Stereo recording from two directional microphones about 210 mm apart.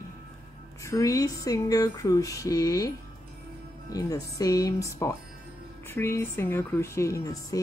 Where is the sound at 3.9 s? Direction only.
15° left (ahead or behind).